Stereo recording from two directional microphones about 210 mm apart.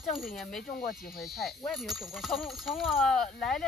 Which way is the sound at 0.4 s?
Centre (ahead or behind).